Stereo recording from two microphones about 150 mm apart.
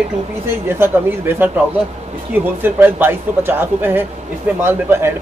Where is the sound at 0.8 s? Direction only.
15° right (ahead or behind).